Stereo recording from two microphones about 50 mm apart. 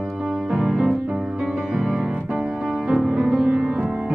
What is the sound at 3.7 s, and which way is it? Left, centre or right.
Music, right.